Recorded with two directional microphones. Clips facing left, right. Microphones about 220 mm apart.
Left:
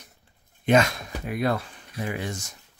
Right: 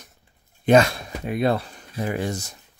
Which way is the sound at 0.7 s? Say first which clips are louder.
Right 4 dB; 35° right (ahead or behind).